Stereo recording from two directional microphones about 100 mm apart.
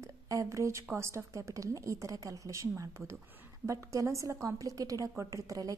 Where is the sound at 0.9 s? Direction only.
30° right (ahead or behind).